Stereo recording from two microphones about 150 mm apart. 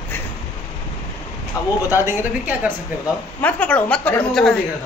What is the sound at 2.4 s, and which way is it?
Speech, 10° right (ahead or behind).